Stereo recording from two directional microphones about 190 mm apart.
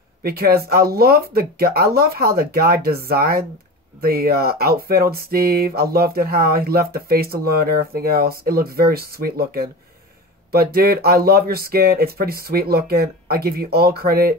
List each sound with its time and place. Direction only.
0.2 s speech: 55° right (ahead or behind)